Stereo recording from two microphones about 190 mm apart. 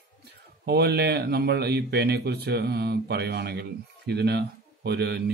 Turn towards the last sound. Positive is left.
turn(degrees=-60)  # may be behind; listen again after turning